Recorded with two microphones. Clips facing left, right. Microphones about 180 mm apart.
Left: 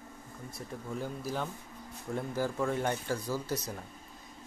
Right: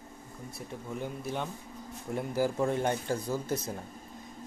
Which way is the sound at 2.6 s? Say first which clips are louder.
Right 2 dB; 20° right (ahead or behind).